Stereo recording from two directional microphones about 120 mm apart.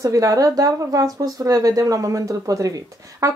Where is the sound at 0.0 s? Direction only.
30° right (ahead or behind).